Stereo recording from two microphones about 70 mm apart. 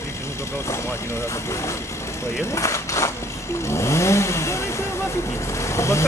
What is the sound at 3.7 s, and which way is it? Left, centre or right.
Speech, left.